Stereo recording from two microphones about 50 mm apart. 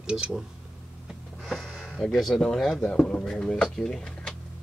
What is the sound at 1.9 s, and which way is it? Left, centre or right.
Speech, centre.